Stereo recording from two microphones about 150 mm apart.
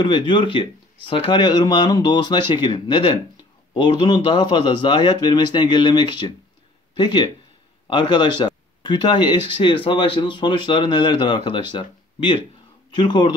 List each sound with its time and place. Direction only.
0.0 s speech: 30° left (ahead or behind)